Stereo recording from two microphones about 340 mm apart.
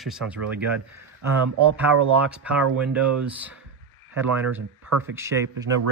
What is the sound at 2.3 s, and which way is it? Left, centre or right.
Speech, centre.